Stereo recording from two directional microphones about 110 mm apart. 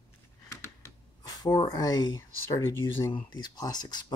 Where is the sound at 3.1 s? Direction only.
40° left (ahead or behind).